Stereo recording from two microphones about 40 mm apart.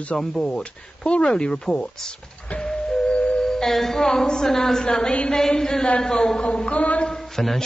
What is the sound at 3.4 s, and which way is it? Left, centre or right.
Speech, centre.